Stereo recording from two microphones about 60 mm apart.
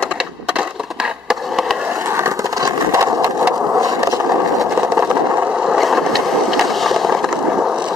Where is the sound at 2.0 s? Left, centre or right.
Right.